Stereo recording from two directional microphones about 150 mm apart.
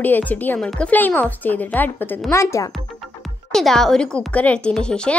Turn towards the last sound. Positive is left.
turn(degrees=5)  # may be behind; listen again after turning